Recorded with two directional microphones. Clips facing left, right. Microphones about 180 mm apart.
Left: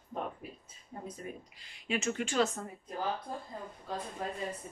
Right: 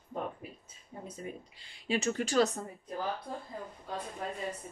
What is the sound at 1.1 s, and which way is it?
A woman's voice, 30° right (ahead or behind).